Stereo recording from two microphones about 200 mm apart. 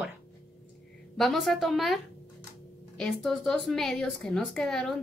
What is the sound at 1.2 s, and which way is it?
Speech, centre (ahead or behind).